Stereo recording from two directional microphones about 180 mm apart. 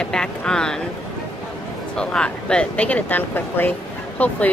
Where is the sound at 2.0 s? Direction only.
5° left (ahead or behind).